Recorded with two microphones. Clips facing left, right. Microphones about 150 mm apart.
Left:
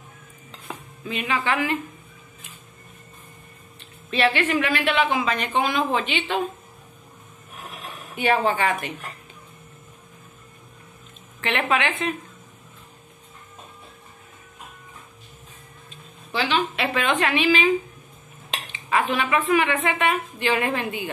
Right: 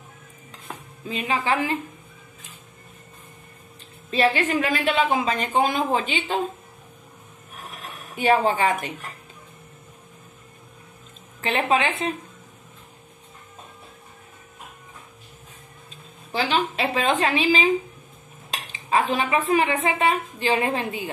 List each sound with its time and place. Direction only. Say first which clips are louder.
1.0 s a woman's voice: even; 35° right (ahead or behind)
4.1 s a woman's voice: even; 40° right (ahead or behind)
7.7 s a sound: left 1 dB; centre (ahead or behind)
8.2 s a woman's voice: right 2 dB; 35° right (ahead or behind)
11.4 s a woman's voice: right 1 dB; 35° right (ahead or behind)
16.3 s a woman's voice: even; 40° right (ahead or behind)
18.9 s a woman's voice: right 1 dB; 35° right (ahead or behind)